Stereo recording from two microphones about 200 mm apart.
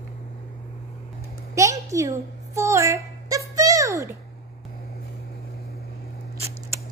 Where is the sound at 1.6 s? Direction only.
15° right (ahead or behind).